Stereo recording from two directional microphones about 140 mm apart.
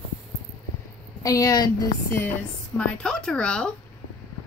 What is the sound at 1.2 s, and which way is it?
Speech, 25° left (ahead or behind).